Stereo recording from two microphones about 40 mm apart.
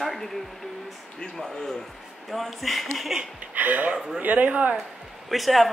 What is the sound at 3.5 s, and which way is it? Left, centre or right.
Speech, right.